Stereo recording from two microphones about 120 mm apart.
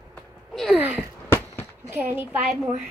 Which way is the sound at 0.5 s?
Centre (ahead or behind).